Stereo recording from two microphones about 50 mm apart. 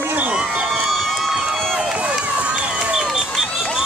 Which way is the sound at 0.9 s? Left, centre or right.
Centre.